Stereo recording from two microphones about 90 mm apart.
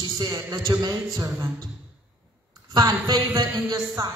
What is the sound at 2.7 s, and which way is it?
Speech, 55° right (ahead or behind).